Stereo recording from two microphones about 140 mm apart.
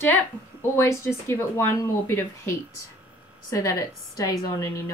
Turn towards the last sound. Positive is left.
turn(degrees=25)  # may be behind; listen again after turning